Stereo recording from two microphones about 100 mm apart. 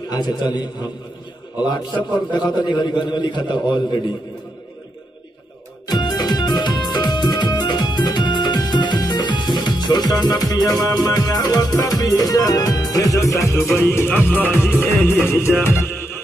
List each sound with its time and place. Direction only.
0.1 s a man's voice: 45° left (ahead or behind)
5.9 s music: 45° left (ahead or behind); by 15.5 s 25° left (ahead or behind)